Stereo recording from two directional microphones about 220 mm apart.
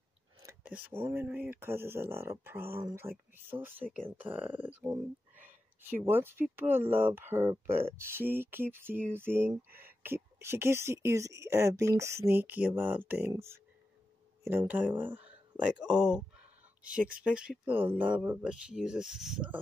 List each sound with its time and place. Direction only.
0.4 s speech: 10° right (ahead or behind)
9.7 s speech: 45° right (ahead or behind)
10.0 s speech: 10° right (ahead or behind)
17.2 s speech: 5° right (ahead or behind)